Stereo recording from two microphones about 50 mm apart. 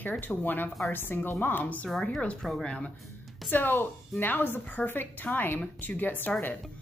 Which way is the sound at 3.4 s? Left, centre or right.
Left.